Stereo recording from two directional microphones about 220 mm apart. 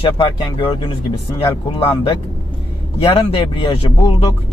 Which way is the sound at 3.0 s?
25° left (ahead or behind).